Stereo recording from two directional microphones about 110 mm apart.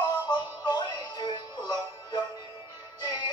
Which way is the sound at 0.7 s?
40° left (ahead or behind).